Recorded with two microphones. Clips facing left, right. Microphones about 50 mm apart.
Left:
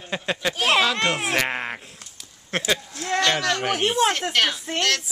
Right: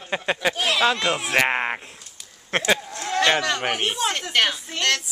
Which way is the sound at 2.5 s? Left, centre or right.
Right.